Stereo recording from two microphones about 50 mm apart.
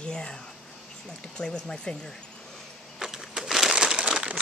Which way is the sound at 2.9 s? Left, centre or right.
Centre.